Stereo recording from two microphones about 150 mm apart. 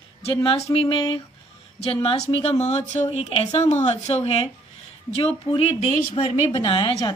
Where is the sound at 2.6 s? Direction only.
50° left (ahead or behind).